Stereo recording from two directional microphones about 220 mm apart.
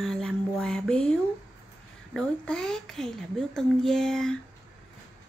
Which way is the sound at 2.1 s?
5° left (ahead or behind).